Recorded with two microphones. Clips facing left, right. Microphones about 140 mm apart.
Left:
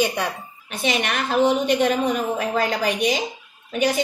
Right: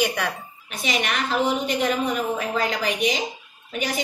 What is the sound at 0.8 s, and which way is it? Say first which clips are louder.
A woman's voice: left 2 dB; 50° left (ahead or behind).